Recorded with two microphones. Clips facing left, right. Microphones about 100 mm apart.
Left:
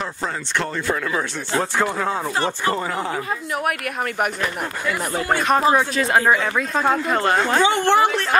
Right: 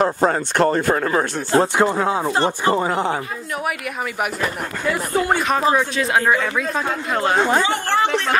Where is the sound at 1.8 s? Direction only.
20° right (ahead or behind).